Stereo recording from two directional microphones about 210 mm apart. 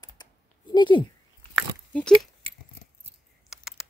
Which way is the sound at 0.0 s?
20° left (ahead or behind).